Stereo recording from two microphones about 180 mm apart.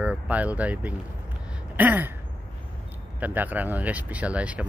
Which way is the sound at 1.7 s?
10° right (ahead or behind).